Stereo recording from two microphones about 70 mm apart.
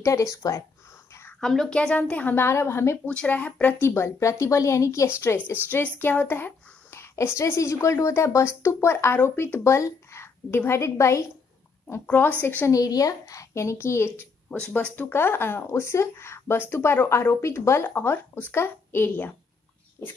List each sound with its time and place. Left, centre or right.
0.0 s a woman's voice: left
1.4 s a woman's voice: centre
1.7 s a woman's voice: centre
2.4 s speech: left
3.1 s a woman's voice: centre
3.8 s a woman's voice: left
5.7 s a woman's voice: left
8.9 s speech: left
12.1 s a woman's voice: left
12.7 s a woman's voice: left
14.6 s speech: centre